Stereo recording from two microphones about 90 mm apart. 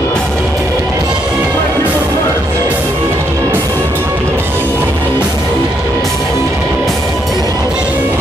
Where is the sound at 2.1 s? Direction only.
40° right (ahead or behind).